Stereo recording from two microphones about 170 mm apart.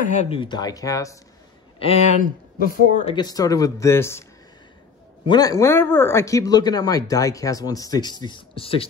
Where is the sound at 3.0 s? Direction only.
25° left (ahead or behind).